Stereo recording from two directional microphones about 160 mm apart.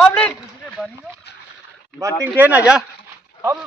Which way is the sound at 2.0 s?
10° right (ahead or behind).